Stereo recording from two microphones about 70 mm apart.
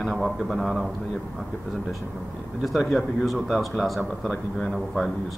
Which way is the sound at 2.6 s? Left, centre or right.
Centre.